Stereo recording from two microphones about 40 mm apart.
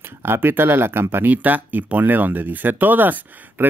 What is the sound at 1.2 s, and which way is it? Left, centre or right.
Speech, right.